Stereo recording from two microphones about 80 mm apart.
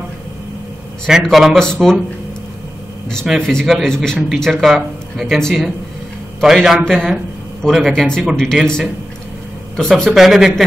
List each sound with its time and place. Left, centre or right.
1.2 s speech: centre
3.3 s speech: centre